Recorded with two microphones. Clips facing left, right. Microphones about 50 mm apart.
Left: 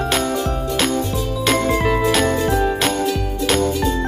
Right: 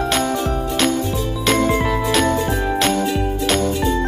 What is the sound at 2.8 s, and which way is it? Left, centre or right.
Music, centre.